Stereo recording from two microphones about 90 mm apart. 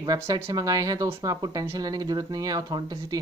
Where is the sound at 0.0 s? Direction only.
45° right (ahead or behind).